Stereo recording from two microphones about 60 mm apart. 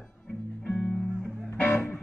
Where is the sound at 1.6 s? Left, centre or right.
Left.